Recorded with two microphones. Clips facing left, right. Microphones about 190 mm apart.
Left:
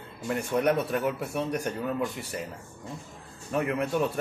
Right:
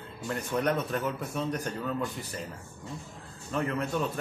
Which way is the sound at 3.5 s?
10° left (ahead or behind).